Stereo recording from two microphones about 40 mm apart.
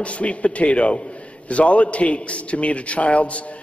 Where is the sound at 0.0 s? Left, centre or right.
Left.